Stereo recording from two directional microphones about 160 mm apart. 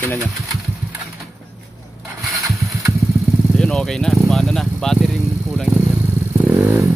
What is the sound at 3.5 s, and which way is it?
Vehicle, 5° left (ahead or behind).